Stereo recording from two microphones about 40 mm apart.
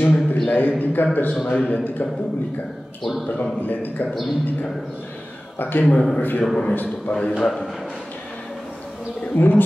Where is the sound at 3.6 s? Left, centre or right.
Left.